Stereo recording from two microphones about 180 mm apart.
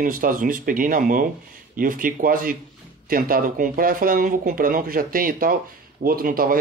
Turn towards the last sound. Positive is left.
turn(degrees=-55)  # may be behind; listen again after turning